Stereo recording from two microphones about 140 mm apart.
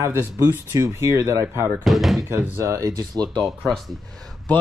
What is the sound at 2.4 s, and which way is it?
Speech, 20° right (ahead or behind).